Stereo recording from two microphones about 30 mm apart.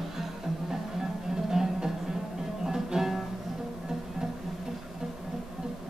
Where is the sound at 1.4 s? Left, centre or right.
Centre.